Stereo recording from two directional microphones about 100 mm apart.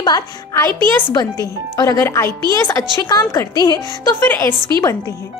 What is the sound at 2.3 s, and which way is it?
Speech, 45° right (ahead or behind).